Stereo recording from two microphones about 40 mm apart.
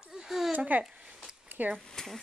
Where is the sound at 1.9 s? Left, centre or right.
Centre.